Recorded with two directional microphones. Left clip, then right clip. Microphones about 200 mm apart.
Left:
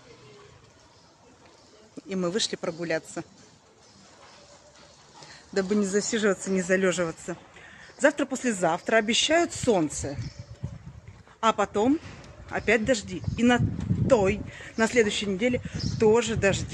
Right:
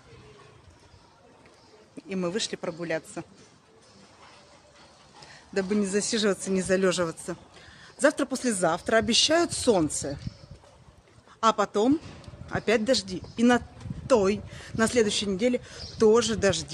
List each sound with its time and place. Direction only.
2.0 s speech: 10° left (ahead or behind)
5.3 s a man's voice: 5° left (ahead or behind)
8.0 s speech: 15° right (ahead or behind)
8.5 s speech: centre (ahead or behind); by 9.9 s 15° right (ahead or behind)
11.3 s speech: 10° right (ahead or behind)